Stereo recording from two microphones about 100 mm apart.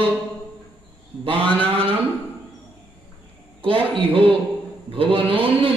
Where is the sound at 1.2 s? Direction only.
65° right (ahead or behind).